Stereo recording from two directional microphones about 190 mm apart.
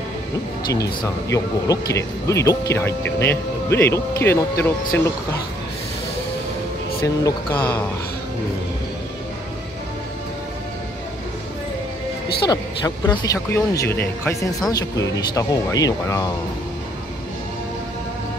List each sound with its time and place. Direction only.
0.7 s speech: 15° left (ahead or behind)
7.0 s speech: 10° left (ahead or behind)
12.4 s speech: 20° left (ahead or behind)